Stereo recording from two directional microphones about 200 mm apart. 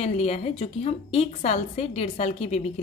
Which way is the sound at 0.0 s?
30° left (ahead or behind).